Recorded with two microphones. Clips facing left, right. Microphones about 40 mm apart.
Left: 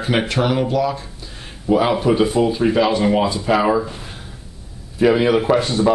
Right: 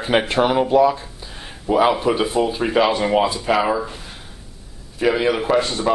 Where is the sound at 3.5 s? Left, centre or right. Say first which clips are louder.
Left 5 dB; centre.